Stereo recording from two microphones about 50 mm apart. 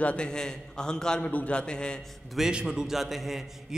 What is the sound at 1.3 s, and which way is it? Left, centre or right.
Speech, left.